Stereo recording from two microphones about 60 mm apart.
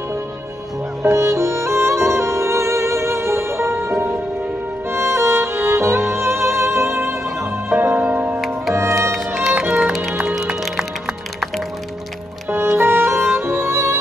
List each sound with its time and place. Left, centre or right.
1.1 s music: right
4.9 s music: right
8.0 s music: right
8.7 s music: right
9.1 s violin: centre
9.5 s music: right
10.3 s music: centre
12.7 s music: right